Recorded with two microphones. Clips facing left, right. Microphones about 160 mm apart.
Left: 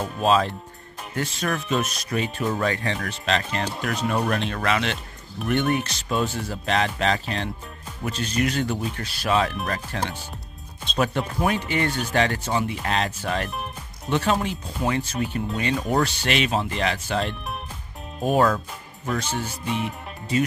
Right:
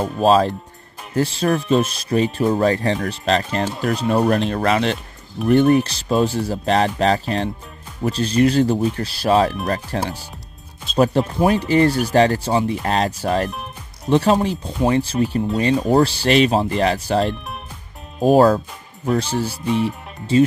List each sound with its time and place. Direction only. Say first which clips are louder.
0.0 s speech: right 6 dB; 35° right (ahead or behind)
11.3 s speech: right 8 dB; 35° right (ahead or behind)
13.5 s music: right 1 dB; centre (ahead or behind)
14.1 s speech: right 7 dB; 35° right (ahead or behind)